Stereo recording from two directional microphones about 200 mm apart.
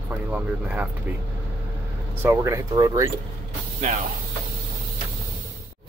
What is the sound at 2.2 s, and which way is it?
Speech, 15° right (ahead or behind).